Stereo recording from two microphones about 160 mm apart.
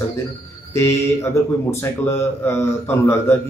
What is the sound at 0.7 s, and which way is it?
Speech, 15° left (ahead or behind).